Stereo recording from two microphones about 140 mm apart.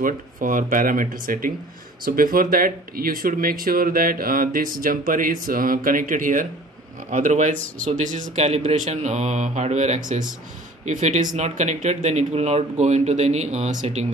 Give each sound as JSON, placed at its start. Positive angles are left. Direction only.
{"t": 0.0, "sound": "a man's voice", "side_deg": -75}